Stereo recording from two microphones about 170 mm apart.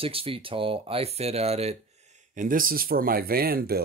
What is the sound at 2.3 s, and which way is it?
Speech, 55° right (ahead or behind).